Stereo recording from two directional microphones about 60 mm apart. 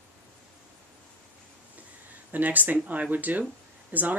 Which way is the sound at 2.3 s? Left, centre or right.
Right.